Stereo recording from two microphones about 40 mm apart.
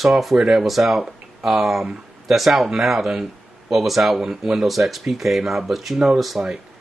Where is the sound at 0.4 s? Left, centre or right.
Centre.